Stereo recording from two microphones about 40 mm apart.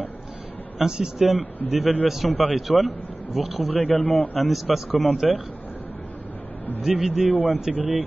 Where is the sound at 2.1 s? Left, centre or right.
Centre.